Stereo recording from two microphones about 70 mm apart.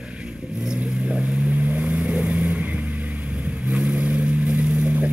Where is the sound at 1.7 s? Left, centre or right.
Centre.